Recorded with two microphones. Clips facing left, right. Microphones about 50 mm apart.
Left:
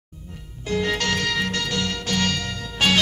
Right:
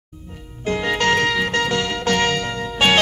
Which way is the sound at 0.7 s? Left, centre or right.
Right.